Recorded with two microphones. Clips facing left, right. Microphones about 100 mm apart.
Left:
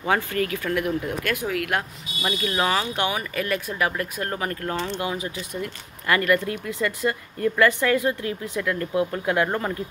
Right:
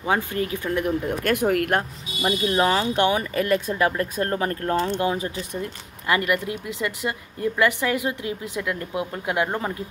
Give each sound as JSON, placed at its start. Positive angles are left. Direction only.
{"t": 0.0, "sound": "speech", "side_deg": -20}
{"t": 0.8, "sound": "speech", "side_deg": -40}
{"t": 1.8, "sound": "speech", "side_deg": -30}
{"t": 6.0, "sound": "speech", "side_deg": -20}